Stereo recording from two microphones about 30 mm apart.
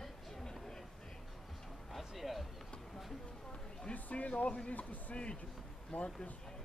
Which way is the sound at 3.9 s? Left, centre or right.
Left.